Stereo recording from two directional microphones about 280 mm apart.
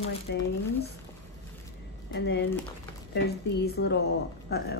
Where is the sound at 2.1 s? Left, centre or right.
Left.